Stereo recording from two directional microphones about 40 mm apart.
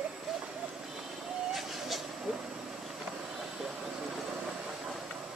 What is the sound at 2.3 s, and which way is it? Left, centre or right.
Vehicle, centre.